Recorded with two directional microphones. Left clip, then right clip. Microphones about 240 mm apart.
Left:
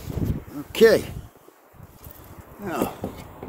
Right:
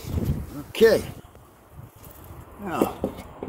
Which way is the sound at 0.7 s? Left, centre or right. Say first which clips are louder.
Left 2 dB; left.